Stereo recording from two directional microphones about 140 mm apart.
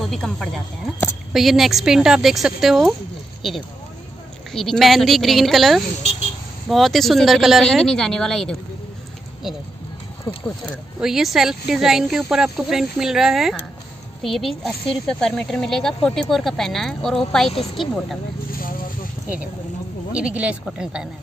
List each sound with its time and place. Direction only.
0.0 s speech: centre (ahead or behind)
4.5 s speech: centre (ahead or behind)
11.0 s speech: 5° right (ahead or behind)
18.5 s vehicle: 90° left
20.1 s speech: 10° right (ahead or behind)